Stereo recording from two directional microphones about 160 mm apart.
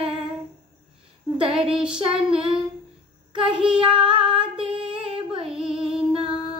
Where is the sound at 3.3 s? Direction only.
30° right (ahead or behind).